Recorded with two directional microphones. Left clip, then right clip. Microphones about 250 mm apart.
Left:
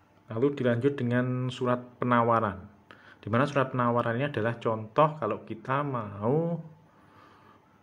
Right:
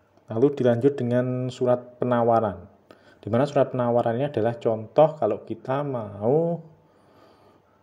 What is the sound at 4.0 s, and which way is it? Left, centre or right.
Speech, centre.